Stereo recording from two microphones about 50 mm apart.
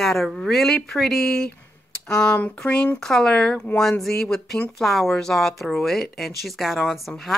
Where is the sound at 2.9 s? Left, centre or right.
Centre.